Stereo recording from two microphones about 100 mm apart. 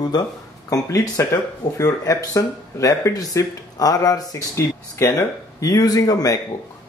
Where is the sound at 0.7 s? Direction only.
35° left (ahead or behind).